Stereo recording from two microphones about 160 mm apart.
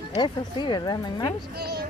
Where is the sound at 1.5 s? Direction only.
85° right.